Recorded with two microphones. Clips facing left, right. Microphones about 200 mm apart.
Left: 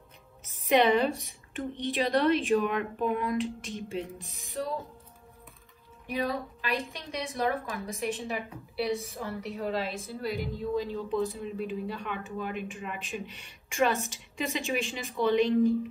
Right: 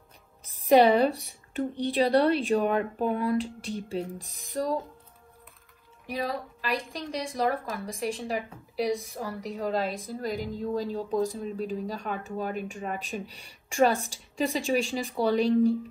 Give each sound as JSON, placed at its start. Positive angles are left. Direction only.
{"t": 0.4, "sound": "speech", "side_deg": -35}
{"t": 6.0, "sound": "speech", "side_deg": -35}